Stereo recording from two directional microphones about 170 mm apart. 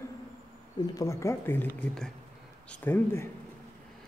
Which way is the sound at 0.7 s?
20° left (ahead or behind).